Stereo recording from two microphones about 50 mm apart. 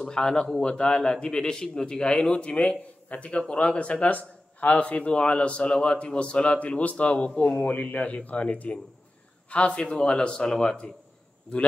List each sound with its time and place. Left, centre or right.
0.0 s a man's voice: centre
5.7 s a man's voice: centre
5.9 s a man's voice: left